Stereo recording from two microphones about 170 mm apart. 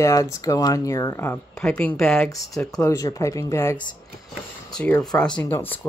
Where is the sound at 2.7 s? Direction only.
20° left (ahead or behind).